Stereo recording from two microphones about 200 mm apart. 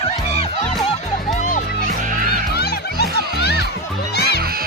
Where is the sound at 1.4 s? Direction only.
35° left (ahead or behind).